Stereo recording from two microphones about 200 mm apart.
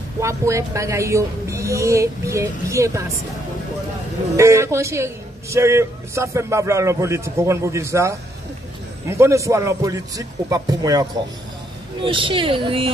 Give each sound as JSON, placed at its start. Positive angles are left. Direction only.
{"t": 0.2, "sound": "a man's voice", "side_deg": -15}
{"t": 4.4, "sound": "a man's voice", "side_deg": -15}